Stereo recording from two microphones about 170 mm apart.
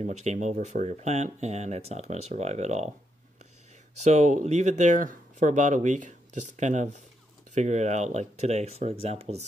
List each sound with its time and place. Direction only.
0.0 s speech: 40° right (ahead or behind)
4.0 s speech: 45° right (ahead or behind)